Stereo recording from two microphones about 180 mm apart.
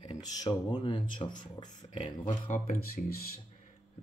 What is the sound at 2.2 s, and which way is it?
Speech, 50° left (ahead or behind).